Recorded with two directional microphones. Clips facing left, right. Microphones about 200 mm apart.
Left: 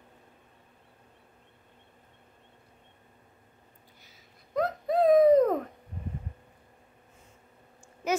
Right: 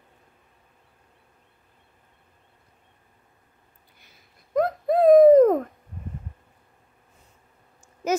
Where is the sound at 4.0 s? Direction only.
55° right (ahead or behind).